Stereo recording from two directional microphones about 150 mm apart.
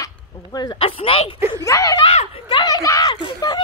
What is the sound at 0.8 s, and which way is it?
Speech, 35° left (ahead or behind).